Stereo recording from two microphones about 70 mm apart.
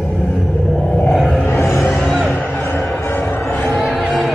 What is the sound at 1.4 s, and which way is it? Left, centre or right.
Music, left.